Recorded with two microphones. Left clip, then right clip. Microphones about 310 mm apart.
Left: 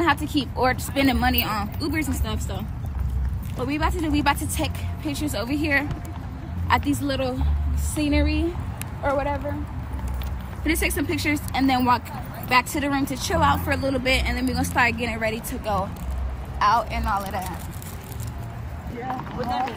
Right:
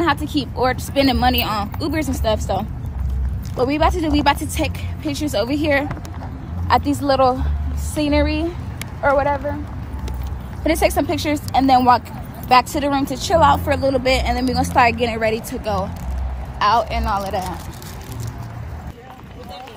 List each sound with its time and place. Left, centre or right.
0.0 s a woman's voice: centre
3.6 s a woman's voice: centre; by 9.4 s right
10.6 s a woman's voice: centre